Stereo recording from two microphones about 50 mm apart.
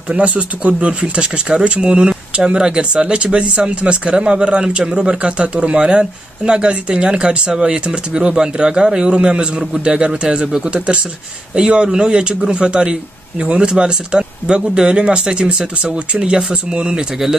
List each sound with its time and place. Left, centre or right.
0.1 s speech: right